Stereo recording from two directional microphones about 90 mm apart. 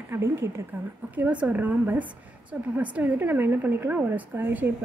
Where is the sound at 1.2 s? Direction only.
15° right (ahead or behind).